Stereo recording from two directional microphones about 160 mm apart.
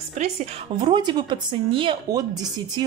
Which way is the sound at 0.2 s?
45° right (ahead or behind).